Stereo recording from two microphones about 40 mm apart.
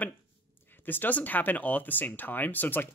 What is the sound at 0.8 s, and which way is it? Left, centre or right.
Speech, left.